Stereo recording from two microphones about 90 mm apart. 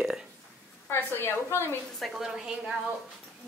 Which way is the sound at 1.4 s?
30° left (ahead or behind).